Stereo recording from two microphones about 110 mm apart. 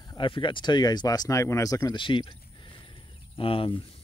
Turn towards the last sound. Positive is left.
turn(degrees=55)  # may be behind; listen again after turning